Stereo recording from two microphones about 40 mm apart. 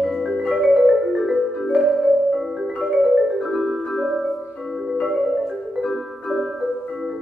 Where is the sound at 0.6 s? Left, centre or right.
Centre.